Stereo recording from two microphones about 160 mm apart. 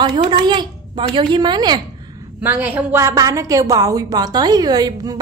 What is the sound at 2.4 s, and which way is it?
A woman's voice, 10° right (ahead or behind).